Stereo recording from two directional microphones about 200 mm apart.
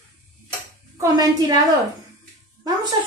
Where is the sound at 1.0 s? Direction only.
20° right (ahead or behind).